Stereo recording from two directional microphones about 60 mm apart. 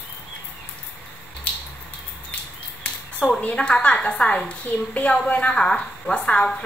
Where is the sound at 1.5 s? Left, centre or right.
Left.